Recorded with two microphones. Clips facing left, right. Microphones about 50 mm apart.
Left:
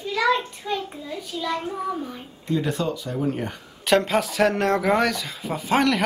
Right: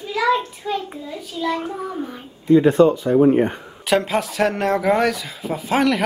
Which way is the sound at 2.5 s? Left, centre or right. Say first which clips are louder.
Right 12 dB; right.